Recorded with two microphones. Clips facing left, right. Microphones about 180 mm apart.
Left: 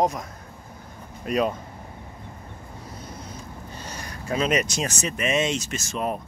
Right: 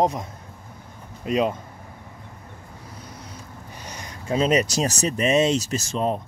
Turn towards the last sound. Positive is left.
turn(degrees=-30)  # may be behind; listen again after turning